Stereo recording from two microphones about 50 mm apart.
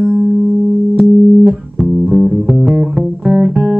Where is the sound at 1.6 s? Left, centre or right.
Centre.